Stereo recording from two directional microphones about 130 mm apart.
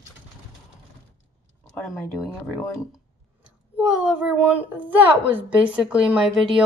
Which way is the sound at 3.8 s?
10° right (ahead or behind).